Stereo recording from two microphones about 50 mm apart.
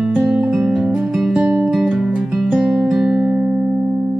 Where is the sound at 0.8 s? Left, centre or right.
Right.